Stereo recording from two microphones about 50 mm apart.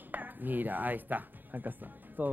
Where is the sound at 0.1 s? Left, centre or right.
Right.